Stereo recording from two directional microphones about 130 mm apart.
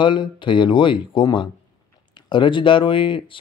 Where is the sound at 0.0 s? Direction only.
40° left (ahead or behind).